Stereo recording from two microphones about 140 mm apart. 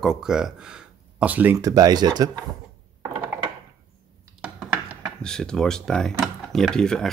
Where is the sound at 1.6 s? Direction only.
25° right (ahead or behind).